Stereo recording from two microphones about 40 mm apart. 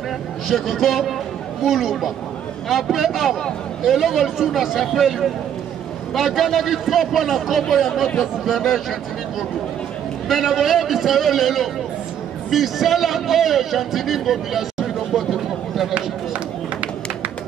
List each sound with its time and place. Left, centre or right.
0.5 s a man's voice: centre
10.2 s a man's voice: centre
15.1 s a sound: centre
15.9 s run: right